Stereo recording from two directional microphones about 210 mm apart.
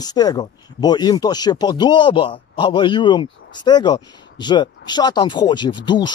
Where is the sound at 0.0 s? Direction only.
20° left (ahead or behind).